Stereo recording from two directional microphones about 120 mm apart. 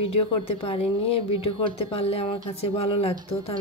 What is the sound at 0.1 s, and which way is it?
Speech, 50° left (ahead or behind).